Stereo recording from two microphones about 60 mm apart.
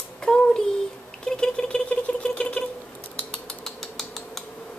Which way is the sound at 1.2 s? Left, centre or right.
Centre.